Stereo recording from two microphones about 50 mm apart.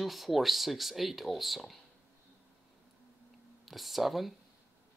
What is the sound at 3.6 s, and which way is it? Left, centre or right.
Speech, centre.